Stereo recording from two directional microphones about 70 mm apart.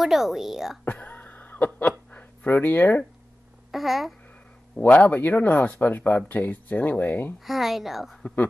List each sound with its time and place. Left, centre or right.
0.0 s a woman's voice: centre
0.8 s throat clearing: left
3.7 s a woman's voice: centre
4.7 s speech: left
7.3 s a woman's voice: centre